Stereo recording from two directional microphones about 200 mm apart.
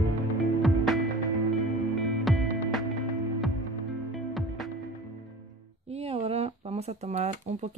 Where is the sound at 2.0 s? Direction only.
Centre (ahead or behind).